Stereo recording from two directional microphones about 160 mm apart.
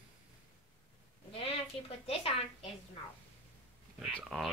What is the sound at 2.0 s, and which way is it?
Speech, 40° left (ahead or behind).